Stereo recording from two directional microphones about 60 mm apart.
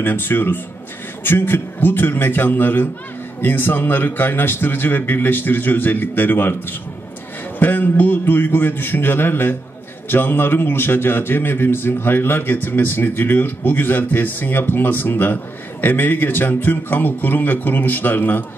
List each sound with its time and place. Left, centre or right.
0.0 s a man's voice: left
7.5 s a man's voice: left